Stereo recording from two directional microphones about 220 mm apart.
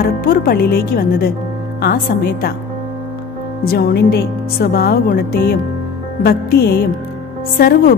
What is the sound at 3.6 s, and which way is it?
A woman's voice, 45° left (ahead or behind).